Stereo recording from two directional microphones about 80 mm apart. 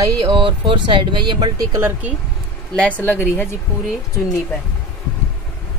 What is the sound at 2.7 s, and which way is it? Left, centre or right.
Speech, centre.